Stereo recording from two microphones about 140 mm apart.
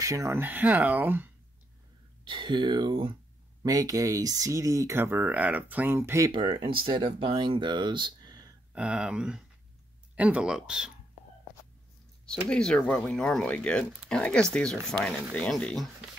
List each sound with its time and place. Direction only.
0.0 s speech: 20° right (ahead or behind)
2.2 s speech: 35° right (ahead or behind)
3.6 s speech: 25° right (ahead or behind)
6.3 s speech: 35° right (ahead or behind)
8.7 s speech: 5° right (ahead or behind)
12.3 s speech: 5° left (ahead or behind)